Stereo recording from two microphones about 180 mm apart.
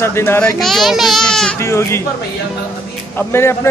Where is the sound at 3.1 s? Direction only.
15° left (ahead or behind).